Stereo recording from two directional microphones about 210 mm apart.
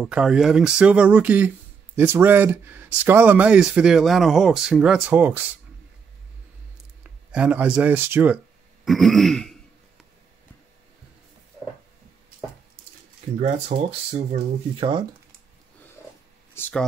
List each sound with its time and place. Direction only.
0.0 s speech: 5° right (ahead or behind)
7.0 s speech: 5° right (ahead or behind)
13.4 s speech: 35° right (ahead or behind)
14.8 s speech: 20° right (ahead or behind)
16.5 s speech: 10° left (ahead or behind)